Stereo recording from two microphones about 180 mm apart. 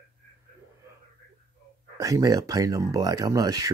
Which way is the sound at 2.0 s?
20° right (ahead or behind).